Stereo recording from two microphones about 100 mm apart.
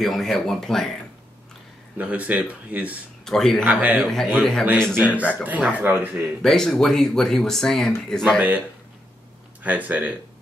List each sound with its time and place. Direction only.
0.0 s speech: centre (ahead or behind)
2.0 s speech: 15° right (ahead or behind)
3.3 s speech: 5° left (ahead or behind)
3.6 s speech: 15° right (ahead or behind)
4.1 s speech: 5° left (ahead or behind)
5.3 s speech: 15° right (ahead or behind)
6.4 s speech: 5° left (ahead or behind)
8.4 s speech: 15° right (ahead or behind)